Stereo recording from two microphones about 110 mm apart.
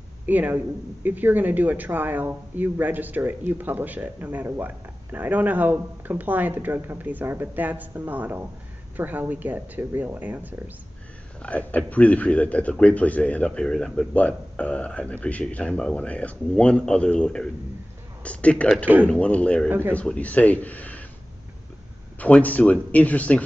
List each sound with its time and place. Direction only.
0.3 s speech: 15° right (ahead or behind)
11.4 s a man's voice: 15° left (ahead or behind)
19.7 s speech: 20° right (ahead or behind)
20.0 s a man's voice: 15° left (ahead or behind)
22.2 s a man's voice: 15° left (ahead or behind)